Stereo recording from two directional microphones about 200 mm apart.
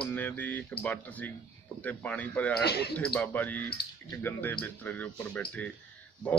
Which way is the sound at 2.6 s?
55° left (ahead or behind).